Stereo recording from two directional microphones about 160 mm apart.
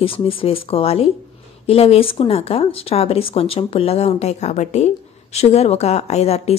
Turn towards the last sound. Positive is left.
turn(degrees=40)  # may be behind; listen again after turning